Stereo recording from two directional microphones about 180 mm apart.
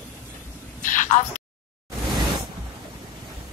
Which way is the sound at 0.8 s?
45° left (ahead or behind).